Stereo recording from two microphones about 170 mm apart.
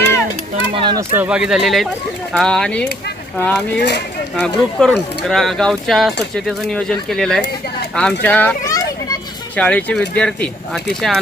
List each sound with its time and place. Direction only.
0.7 s speech: 25° right (ahead or behind)
1.1 s a child's voice: 5° right (ahead or behind); by 9.2 s 20° left (ahead or behind)
9.6 s speech: 5° left (ahead or behind)